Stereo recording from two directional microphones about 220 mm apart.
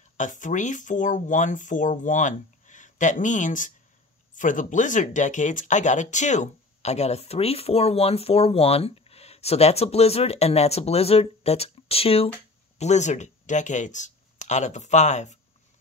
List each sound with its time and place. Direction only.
0.2 s speech: 35° left (ahead or behind)